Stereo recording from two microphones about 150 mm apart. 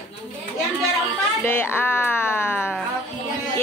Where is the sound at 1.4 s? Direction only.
15° left (ahead or behind).